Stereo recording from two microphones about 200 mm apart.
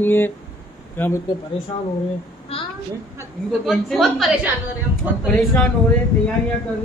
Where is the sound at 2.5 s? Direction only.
30° left (ahead or behind).